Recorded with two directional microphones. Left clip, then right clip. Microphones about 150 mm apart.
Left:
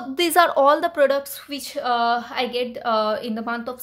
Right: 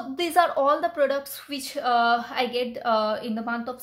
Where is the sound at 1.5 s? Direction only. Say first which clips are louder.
Left 1 dB; 10° left (ahead or behind).